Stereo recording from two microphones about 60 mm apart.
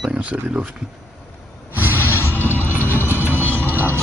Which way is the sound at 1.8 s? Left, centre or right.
Right.